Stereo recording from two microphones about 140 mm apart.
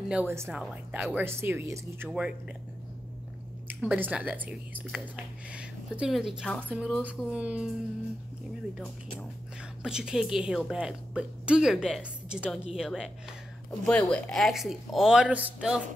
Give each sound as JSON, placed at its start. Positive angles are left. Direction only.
{"t": 0.1, "sound": "speech", "side_deg": -15}
{"t": 0.5, "sound": "speech", "side_deg": -5}
{"t": 3.6, "sound": "speech", "side_deg": -10}
{"t": 9.8, "sound": "a woman's voice", "side_deg": -5}
{"t": 13.8, "sound": "a woman's voice", "side_deg": 10}